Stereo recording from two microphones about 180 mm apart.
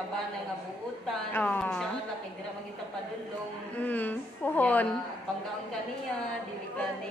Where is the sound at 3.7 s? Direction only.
10° left (ahead or behind).